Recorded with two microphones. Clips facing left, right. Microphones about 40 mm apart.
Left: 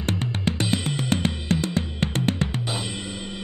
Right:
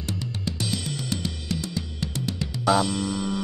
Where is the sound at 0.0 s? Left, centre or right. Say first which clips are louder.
Left 5 dB; left.